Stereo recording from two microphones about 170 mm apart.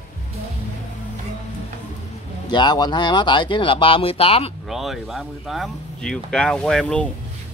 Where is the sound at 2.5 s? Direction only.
25° left (ahead or behind).